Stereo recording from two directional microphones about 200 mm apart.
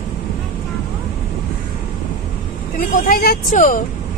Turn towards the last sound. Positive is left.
turn(degrees=45)  # may be behind; listen again after turning